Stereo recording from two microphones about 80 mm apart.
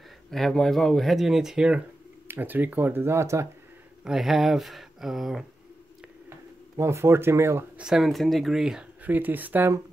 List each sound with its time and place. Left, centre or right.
0.3 s speech: centre
2.2 s speech: right
4.0 s speech: centre
6.8 s speech: right
7.7 s speech: centre
9.0 s speech: right